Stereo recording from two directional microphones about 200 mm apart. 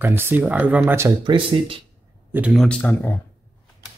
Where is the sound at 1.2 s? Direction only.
25° right (ahead or behind).